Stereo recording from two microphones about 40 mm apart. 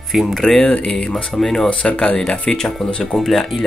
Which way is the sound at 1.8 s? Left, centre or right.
Left.